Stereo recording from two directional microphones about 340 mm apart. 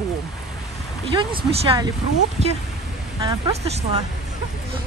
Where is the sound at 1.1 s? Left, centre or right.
Centre.